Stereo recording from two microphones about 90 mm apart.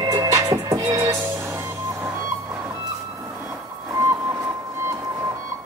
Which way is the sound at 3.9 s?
30° right (ahead or behind).